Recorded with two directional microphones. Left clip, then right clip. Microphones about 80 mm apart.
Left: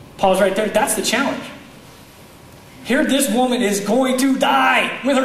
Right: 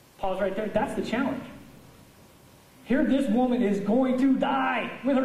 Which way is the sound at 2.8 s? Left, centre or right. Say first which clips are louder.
Left 8 dB; right.